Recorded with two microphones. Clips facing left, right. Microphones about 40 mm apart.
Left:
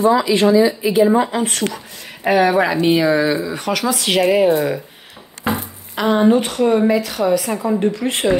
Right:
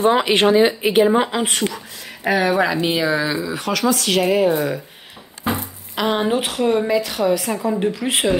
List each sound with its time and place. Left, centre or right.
0.0 s speech: right
2.3 s speech: centre
3.9 s speech: left
4.6 s speech: centre
5.5 s speech: centre